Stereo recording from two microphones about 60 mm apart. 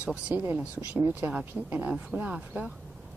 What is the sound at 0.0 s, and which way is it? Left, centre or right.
Speech, right.